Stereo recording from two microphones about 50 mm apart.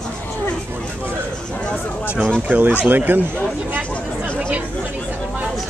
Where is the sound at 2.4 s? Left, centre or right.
Right.